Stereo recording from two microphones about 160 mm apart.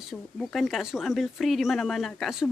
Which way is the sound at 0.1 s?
Centre (ahead or behind).